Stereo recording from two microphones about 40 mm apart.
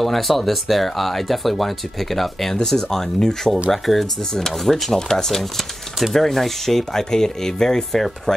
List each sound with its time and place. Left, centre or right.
0.0 s speech: centre
3.7 s speech: centre